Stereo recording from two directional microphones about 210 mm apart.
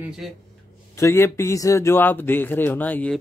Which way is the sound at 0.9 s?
10° left (ahead or behind).